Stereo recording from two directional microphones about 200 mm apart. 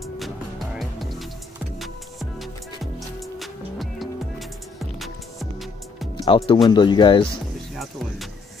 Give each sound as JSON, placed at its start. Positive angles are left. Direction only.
{"t": 0.0, "sound": "music", "side_deg": 0}
{"t": 2.8, "sound": "music", "side_deg": 0}
{"t": 6.1, "sound": "speech", "side_deg": 25}
{"t": 7.7, "sound": "music", "side_deg": 0}